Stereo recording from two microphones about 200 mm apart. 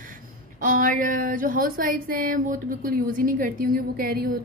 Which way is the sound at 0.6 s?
45° right (ahead or behind).